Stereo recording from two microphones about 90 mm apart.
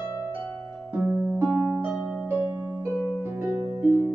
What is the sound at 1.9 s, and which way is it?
Harp, 15° right (ahead or behind).